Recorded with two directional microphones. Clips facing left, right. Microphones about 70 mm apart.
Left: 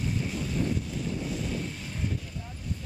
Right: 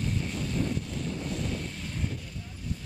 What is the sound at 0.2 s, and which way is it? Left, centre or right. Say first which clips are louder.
Vehicle: left 1 dB; centre.